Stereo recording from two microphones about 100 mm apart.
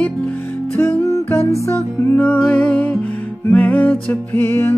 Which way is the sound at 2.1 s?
15° left (ahead or behind).